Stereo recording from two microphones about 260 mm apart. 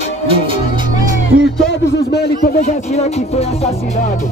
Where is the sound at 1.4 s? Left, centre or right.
Left.